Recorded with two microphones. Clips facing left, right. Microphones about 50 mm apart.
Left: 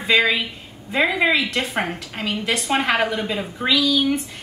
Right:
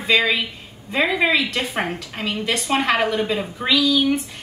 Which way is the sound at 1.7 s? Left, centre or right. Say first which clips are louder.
Even; centre.